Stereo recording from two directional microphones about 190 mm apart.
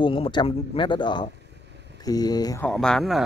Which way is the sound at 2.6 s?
5° left (ahead or behind).